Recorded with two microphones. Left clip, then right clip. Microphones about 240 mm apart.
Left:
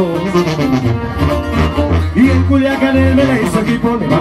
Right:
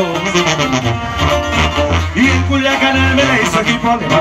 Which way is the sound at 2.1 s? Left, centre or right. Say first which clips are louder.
Left 2 dB; right.